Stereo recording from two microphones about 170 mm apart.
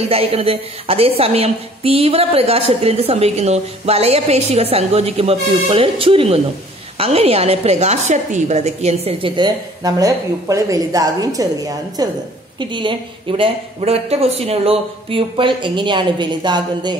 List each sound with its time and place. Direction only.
0.1 s a woman's voice: 35° right (ahead or behind)